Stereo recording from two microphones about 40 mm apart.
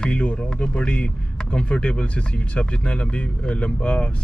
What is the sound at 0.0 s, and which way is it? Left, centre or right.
Speech, left.